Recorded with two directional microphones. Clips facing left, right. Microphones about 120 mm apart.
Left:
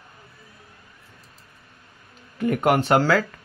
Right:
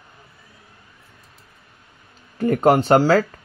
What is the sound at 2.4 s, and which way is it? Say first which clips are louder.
Speech: right 4 dB; 35° right (ahead or behind).